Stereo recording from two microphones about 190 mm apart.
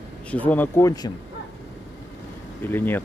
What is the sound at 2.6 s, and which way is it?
Speech, 10° left (ahead or behind).